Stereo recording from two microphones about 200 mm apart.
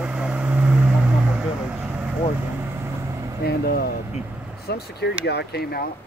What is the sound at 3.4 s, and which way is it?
Vehicle, 50° left (ahead or behind).